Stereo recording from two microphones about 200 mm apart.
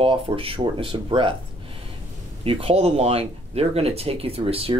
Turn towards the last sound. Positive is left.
turn(degrees=-25)  # may be behind; listen again after turning